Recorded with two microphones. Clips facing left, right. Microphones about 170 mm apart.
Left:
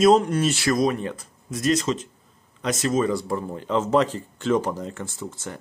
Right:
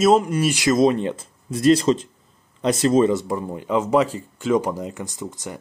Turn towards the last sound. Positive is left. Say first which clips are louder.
# right 2 dB
turn(degrees=-15)  # may be behind; listen again after turning